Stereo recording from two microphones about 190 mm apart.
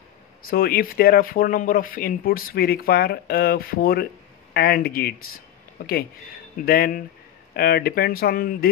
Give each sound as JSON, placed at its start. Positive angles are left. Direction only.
{"t": 0.5, "sound": "speech", "side_deg": 50}
{"t": 6.6, "sound": "speech", "side_deg": 50}